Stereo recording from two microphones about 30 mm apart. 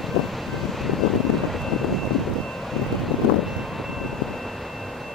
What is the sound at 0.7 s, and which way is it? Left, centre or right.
Vehicle, centre.